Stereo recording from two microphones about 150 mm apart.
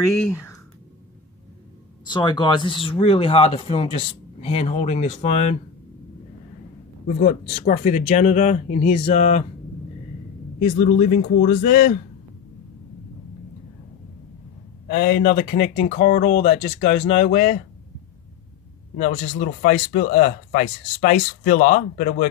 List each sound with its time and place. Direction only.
2.0 s speech: 30° left (ahead or behind)
7.6 s speech: 55° left (ahead or behind)
10.6 s a man's voice: 65° left (ahead or behind)
14.9 s speech: 75° left (ahead or behind); by 17.6 s 55° left (ahead or behind)
18.9 s speech: 55° left (ahead or behind)